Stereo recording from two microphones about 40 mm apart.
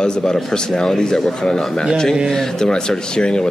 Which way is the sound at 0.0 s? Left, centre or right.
Centre.